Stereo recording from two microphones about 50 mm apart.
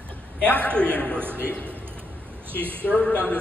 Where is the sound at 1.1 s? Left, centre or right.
Right.